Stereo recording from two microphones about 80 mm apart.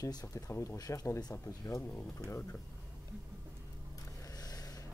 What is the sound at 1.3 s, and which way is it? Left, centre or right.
Speech, left.